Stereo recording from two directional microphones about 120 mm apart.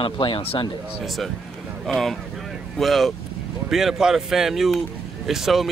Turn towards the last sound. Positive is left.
turn(degrees=0)  # may be behind; listen again after turning